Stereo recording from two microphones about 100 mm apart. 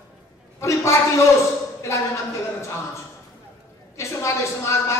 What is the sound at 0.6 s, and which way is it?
Speech, 30° left (ahead or behind).